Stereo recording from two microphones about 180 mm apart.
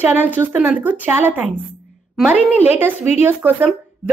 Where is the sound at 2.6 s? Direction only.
10° right (ahead or behind).